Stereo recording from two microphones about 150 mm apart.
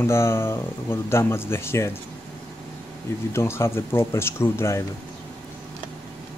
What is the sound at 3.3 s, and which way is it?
Speech, 15° left (ahead or behind).